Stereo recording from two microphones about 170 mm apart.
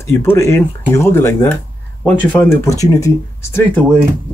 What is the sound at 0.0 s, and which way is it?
Speech, 15° left (ahead or behind).